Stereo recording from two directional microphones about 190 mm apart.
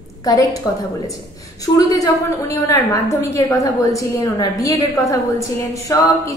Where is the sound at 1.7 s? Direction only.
20° left (ahead or behind).